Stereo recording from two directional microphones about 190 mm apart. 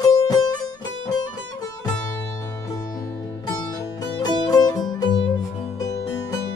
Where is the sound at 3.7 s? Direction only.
20° left (ahead or behind).